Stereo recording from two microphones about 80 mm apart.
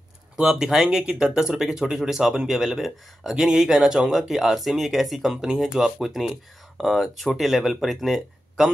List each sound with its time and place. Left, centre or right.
0.4 s speech: centre